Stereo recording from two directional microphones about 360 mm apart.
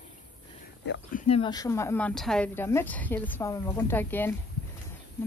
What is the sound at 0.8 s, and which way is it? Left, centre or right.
Speech, left.